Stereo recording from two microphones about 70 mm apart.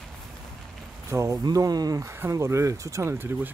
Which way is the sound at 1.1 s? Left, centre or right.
Right.